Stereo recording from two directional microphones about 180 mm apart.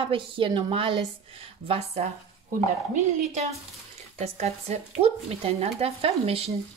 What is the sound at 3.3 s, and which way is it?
Speech, 40° right (ahead or behind).